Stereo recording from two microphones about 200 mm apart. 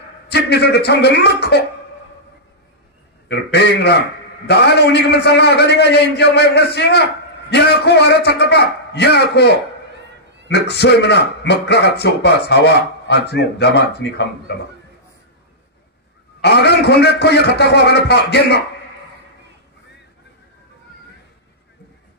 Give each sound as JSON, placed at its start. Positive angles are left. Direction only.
{"t": 0.3, "sound": "a man's voice", "side_deg": 55}
{"t": 3.3, "sound": "a man's voice", "side_deg": 55}
{"t": 16.3, "sound": "a man's voice", "side_deg": 55}